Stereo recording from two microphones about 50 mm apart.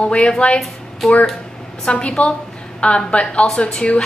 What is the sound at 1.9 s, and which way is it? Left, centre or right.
A woman's voice, left.